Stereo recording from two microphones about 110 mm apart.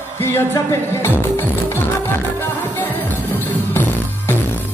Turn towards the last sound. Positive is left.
turn(degrees=20)  # may be behind; listen again after turning